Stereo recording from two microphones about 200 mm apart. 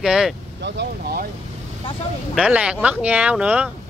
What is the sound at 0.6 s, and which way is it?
Speech, 60° right (ahead or behind).